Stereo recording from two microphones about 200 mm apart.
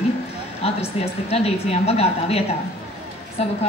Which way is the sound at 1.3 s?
30° left (ahead or behind).